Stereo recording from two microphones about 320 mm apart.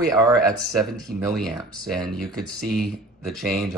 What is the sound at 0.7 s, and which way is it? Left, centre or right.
Speech, centre.